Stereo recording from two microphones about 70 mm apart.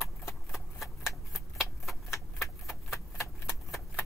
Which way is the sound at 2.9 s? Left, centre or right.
Left.